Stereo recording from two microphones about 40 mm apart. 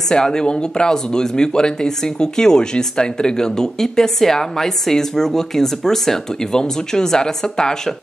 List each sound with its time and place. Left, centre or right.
0.1 s speech: centre